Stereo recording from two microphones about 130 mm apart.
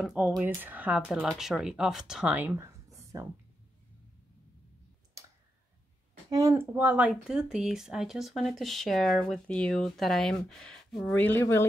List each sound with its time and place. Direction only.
0.0 s speech: 5° right (ahead or behind)
0.6 s speech: 15° right (ahead or behind)
2.3 s a sound: 20° right (ahead or behind)
6.5 s speech: 15° right (ahead or behind); by 11.1 s 5° left (ahead or behind)
11.1 s speech: 15° left (ahead or behind)